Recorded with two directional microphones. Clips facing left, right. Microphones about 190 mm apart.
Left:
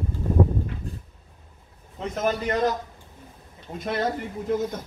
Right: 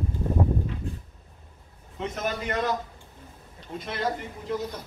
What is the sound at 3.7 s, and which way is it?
Speech, 45° left (ahead or behind).